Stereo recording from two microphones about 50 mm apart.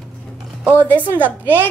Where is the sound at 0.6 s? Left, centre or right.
Right.